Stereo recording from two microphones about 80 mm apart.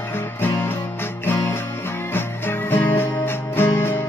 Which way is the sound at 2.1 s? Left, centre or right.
Left.